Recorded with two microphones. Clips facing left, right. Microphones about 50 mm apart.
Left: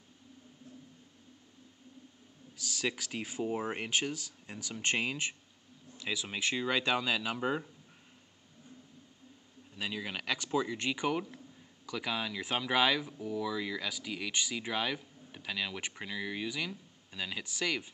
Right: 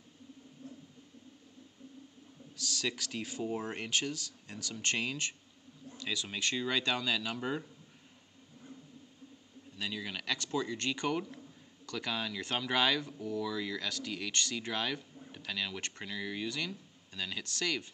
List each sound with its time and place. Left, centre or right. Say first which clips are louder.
2.5 s a man's voice: left 1 dB; centre
9.8 s a man's voice: left 1 dB; centre